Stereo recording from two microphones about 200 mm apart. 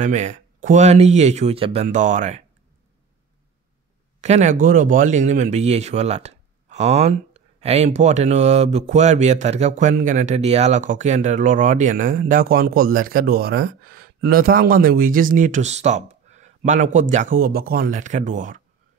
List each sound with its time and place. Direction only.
0.0 s speech: 35° right (ahead or behind)
4.2 s speech: 35° right (ahead or behind)